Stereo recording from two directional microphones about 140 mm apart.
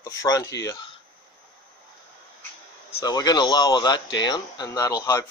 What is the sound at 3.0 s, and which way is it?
Speech, 30° left (ahead or behind).